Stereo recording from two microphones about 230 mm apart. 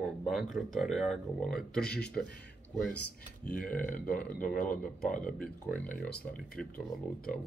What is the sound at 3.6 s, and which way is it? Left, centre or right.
Speech, centre.